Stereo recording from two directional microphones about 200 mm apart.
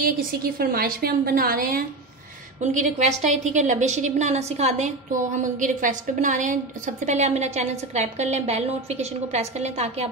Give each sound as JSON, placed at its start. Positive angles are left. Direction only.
{"t": 0.0, "sound": "a woman's voice", "side_deg": -45}
{"t": 2.6, "sound": "a woman's voice", "side_deg": -35}